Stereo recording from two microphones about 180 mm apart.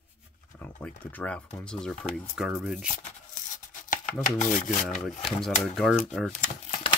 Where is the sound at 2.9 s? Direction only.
40° left (ahead or behind).